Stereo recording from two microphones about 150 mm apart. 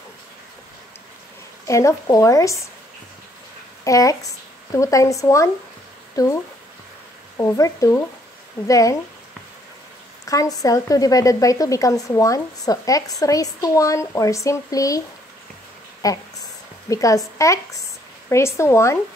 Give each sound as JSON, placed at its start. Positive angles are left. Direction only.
{"t": 1.7, "sound": "speech", "side_deg": 20}
{"t": 3.8, "sound": "speech", "side_deg": 20}
{"t": 10.2, "sound": "speech", "side_deg": 25}